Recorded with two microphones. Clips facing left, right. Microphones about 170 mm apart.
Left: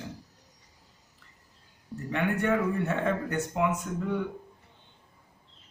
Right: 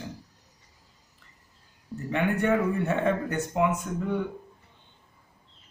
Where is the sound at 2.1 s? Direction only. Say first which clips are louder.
Right 2 dB; 20° right (ahead or behind).